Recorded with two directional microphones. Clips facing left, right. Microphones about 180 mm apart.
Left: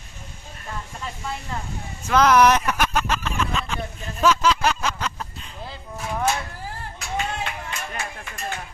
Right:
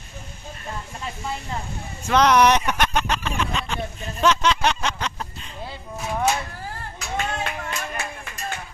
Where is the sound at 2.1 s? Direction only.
5° left (ahead or behind).